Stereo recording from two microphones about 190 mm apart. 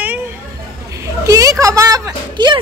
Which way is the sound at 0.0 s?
10° right (ahead or behind).